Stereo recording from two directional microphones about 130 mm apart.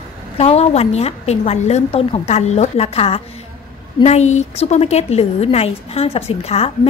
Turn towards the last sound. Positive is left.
turn(degrees=50)  # may be behind; listen again after turning